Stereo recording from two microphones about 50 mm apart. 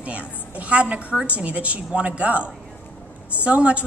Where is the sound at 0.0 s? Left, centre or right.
Right.